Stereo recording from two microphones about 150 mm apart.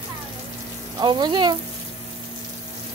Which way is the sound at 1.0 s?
30° right (ahead or behind).